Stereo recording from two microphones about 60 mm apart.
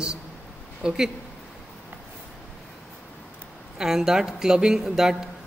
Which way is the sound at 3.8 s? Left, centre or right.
Centre.